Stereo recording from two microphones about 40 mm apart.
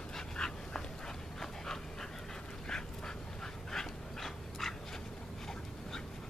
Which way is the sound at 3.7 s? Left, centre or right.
Centre.